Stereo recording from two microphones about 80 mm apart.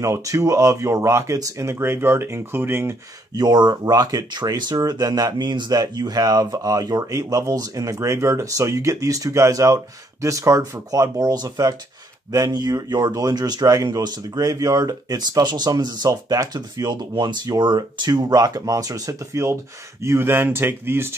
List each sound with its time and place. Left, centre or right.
0.0 s speech: right
3.3 s speech: right